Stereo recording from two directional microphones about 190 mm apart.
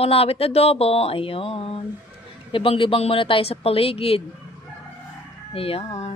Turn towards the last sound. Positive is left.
turn(degrees=30)  # may be behind; listen again after turning